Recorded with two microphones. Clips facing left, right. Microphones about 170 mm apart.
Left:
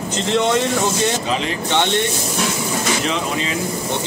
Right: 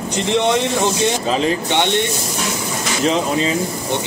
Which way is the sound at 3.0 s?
35° right (ahead or behind).